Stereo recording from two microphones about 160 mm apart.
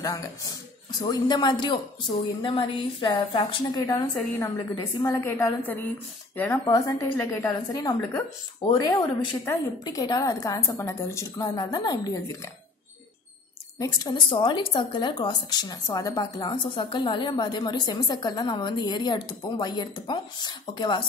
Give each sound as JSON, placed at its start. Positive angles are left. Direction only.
{"t": 0.0, "sound": "speech", "side_deg": 20}
{"t": 13.7, "sound": "speech", "side_deg": 25}